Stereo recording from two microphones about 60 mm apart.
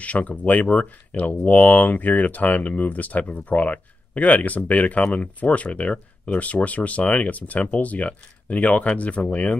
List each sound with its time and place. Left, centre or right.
0.0 s speech: left